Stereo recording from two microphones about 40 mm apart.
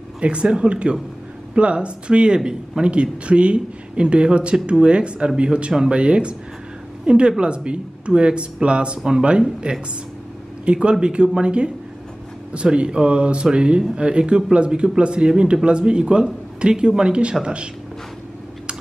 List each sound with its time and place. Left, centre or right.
0.2 s speech: right